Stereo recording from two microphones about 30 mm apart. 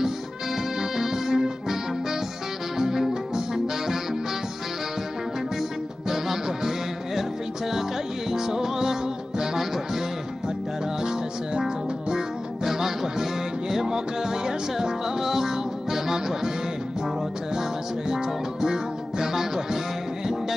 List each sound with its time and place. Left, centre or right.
0.9 s music: centre
2.8 s music: centre
6.0 s music: centre
8.3 s music: centre
11.0 s music: right
17.6 s music: centre